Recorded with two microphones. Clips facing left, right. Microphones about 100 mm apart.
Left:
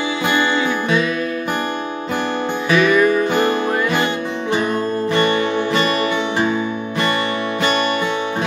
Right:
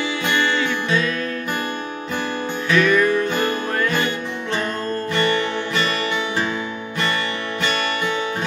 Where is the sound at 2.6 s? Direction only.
15° left (ahead or behind).